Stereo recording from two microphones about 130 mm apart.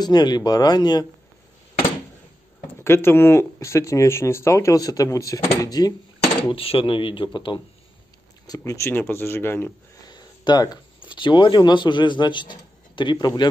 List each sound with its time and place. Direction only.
0.0 s speech: 30° left (ahead or behind)
2.8 s speech: 20° left (ahead or behind)
6.5 s speech: 45° left (ahead or behind)
8.5 s speech: 25° left (ahead or behind)
10.0 s speech: 35° left (ahead or behind)